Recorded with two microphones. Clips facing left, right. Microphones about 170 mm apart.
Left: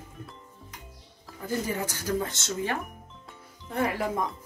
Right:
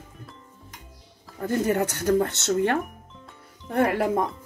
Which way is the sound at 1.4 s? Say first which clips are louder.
Right 7 dB; 65° right (ahead or behind).